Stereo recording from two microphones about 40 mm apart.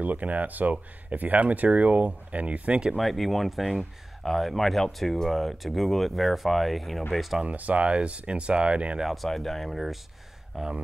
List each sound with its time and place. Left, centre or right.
0.0 s speech: right
3.0 s speech: centre
7.4 s speech: right
9.0 s speech: centre
10.5 s speech: centre